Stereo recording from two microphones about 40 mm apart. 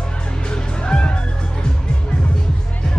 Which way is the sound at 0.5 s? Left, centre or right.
Left.